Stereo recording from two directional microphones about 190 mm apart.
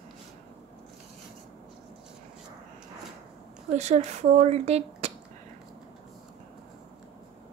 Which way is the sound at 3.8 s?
35° right (ahead or behind).